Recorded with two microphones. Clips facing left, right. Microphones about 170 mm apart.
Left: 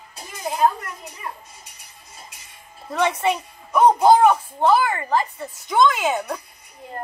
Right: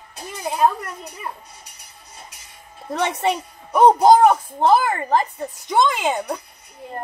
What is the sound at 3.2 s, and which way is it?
A child's voice, 35° right (ahead or behind).